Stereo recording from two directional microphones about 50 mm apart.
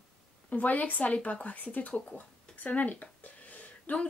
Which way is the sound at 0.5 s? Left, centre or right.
Left.